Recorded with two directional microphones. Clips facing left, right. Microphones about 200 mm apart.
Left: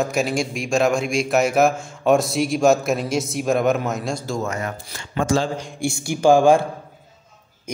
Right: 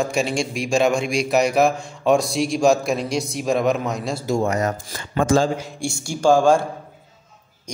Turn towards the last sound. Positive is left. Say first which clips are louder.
# left 1 dB
turn(degrees=20)  # may be behind; listen again after turning